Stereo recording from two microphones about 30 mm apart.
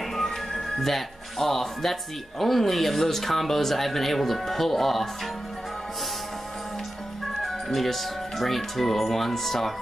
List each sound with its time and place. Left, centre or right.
0.5 s speech: centre
7.4 s speech: centre